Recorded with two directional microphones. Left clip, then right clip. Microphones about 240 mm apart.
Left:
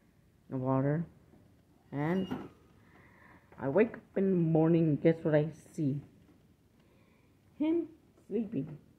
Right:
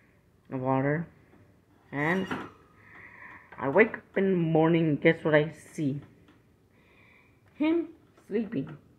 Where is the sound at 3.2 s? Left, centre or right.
Centre.